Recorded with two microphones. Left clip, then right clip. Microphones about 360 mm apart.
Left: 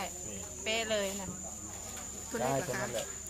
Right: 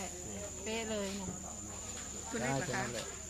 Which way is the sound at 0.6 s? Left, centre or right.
Left.